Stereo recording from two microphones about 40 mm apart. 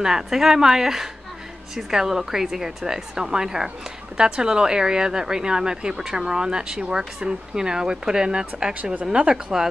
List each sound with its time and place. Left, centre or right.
0.0 s a woman's voice: centre